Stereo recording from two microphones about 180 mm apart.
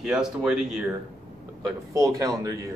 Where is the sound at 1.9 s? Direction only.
20° right (ahead or behind).